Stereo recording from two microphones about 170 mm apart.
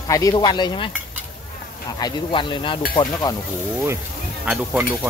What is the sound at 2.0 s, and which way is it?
Cutlery, 25° left (ahead or behind).